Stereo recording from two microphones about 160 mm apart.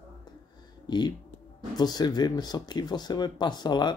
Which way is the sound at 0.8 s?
25° left (ahead or behind).